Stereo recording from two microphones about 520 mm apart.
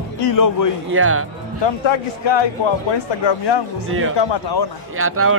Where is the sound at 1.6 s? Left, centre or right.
Left.